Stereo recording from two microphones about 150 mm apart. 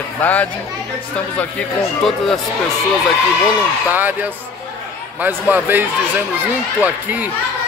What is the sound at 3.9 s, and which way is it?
Speech, 10° right (ahead or behind).